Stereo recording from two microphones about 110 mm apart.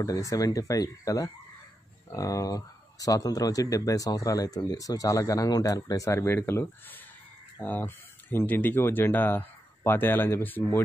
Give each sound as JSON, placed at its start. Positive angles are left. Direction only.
{"t": 0.0, "sound": "speech", "side_deg": 30}